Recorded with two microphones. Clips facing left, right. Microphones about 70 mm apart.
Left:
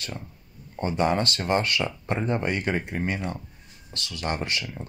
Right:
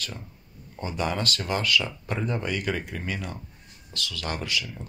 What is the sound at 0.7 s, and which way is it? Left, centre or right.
Speech, left.